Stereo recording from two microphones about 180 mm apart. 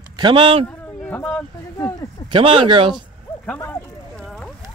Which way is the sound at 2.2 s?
25° right (ahead or behind).